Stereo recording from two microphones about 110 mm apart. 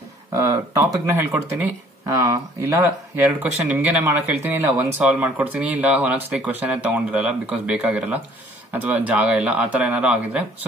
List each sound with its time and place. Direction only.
0.3 s speech: 25° right (ahead or behind)
2.0 s speech: 30° right (ahead or behind); by 10.4 s 10° right (ahead or behind)